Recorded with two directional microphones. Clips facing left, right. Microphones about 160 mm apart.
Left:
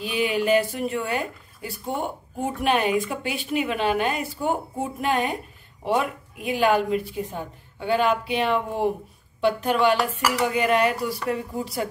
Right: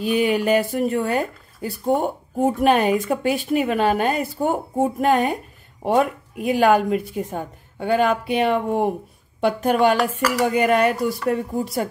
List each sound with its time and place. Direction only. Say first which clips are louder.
0.0 s speech: right 5 dB; 45° right (ahead or behind)